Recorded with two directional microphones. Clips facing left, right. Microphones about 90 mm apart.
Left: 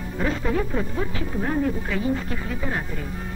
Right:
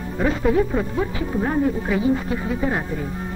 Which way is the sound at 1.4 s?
15° right (ahead or behind).